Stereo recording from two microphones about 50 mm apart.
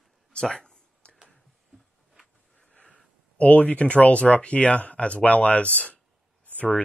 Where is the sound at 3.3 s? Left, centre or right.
Left.